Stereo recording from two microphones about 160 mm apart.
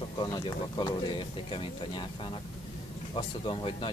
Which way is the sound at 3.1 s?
30° left (ahead or behind).